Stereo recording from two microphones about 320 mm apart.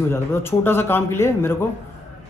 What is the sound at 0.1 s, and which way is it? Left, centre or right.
A man's voice, centre.